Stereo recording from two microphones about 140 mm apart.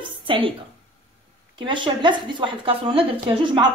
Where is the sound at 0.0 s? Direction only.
40° right (ahead or behind).